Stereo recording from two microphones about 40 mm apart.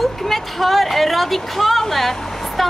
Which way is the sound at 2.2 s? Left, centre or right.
Centre.